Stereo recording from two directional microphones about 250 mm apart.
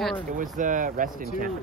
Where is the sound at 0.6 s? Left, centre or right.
Right.